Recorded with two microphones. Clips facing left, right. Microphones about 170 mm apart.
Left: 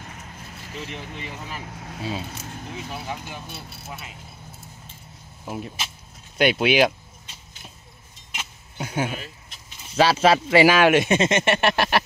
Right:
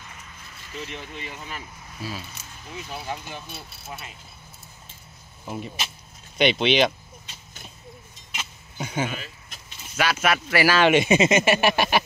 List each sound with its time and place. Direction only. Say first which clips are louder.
0.0 s vehicle: left 5 dB; 45° left (ahead or behind)
1.6 s speech: left 6 dB; 75° left (ahead or behind)
2.0 s speech: left 4 dB; 25° left (ahead or behind)
2.2 s speech: left 7 dB; 55° left (ahead or behind)
5.4 s speech: even; 5° left (ahead or behind)
8.4 s a sound: even; 5° left (ahead or behind)
9.9 s speech: left 6 dB; 30° left (ahead or behind)
10.8 s speech: even; centre (ahead or behind)